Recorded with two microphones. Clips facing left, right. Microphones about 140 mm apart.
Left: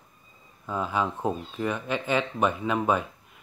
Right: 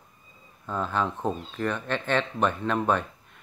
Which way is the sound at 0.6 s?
10° left (ahead or behind).